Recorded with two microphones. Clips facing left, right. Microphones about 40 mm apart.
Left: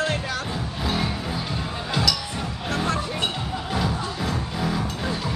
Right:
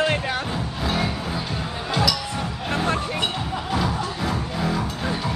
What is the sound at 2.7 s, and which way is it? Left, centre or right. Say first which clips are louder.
Music: right 2 dB; right.